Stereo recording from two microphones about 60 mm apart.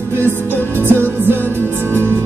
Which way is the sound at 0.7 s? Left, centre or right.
Right.